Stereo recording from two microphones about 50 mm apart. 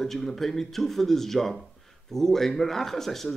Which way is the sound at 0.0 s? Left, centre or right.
Centre.